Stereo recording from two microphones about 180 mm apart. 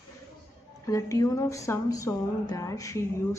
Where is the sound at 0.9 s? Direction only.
15° left (ahead or behind).